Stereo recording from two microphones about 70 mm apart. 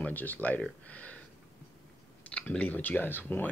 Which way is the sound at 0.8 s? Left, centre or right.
Left.